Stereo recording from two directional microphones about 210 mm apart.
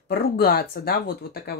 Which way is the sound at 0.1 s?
45° left (ahead or behind).